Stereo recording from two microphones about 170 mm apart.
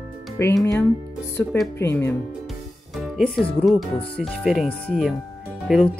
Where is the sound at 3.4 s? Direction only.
Centre (ahead or behind).